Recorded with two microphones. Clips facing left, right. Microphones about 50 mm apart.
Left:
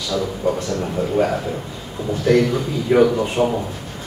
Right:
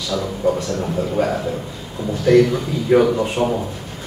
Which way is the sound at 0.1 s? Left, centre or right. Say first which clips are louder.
Left 1 dB; centre.